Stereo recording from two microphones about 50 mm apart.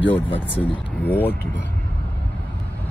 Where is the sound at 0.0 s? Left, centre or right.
Left.